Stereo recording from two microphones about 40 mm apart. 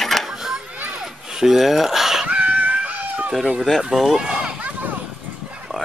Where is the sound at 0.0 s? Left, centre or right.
Centre.